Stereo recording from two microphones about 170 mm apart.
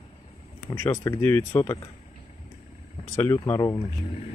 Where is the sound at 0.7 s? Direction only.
15° left (ahead or behind).